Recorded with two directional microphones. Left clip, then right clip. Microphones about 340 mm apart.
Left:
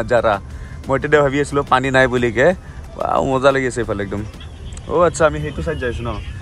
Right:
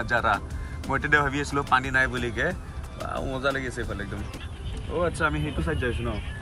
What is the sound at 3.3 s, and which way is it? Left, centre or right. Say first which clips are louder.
Speech: left 10 dB; left.